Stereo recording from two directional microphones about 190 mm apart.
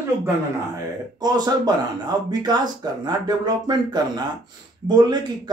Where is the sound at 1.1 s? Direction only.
20° right (ahead or behind).